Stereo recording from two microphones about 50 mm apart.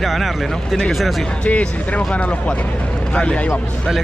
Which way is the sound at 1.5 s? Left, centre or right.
Left.